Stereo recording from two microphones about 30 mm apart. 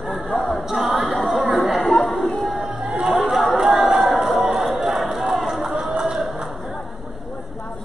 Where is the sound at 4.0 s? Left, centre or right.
Centre.